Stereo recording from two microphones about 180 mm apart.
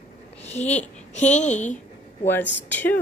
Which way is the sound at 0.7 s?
40° left (ahead or behind).